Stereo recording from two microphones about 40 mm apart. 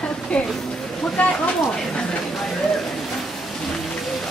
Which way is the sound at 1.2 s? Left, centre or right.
Left.